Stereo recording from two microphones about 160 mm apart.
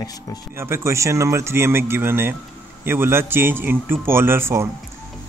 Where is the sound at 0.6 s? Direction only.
15° right (ahead or behind).